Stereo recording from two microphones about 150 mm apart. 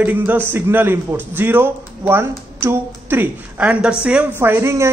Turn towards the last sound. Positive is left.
turn(degrees=-15)  # may be behind; listen again after turning